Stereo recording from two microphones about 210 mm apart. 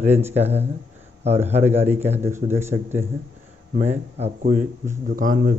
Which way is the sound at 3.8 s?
30° right (ahead or behind).